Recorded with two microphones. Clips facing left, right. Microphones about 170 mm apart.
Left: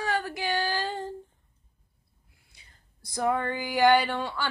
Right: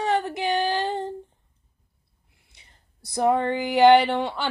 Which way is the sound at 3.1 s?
25° right (ahead or behind).